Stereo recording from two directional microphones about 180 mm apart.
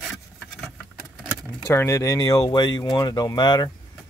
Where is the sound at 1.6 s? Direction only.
15° left (ahead or behind).